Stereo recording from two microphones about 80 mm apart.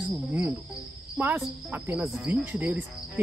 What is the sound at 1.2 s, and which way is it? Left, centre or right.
Speech, right.